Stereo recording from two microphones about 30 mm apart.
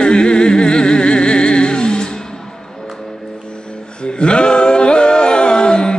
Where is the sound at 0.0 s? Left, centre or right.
Left.